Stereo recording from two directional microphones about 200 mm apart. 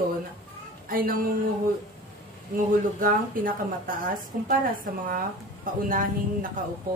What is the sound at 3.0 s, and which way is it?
A woman's voice, 45° right (ahead or behind).